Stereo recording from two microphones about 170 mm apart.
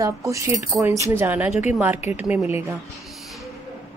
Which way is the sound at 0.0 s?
20° right (ahead or behind).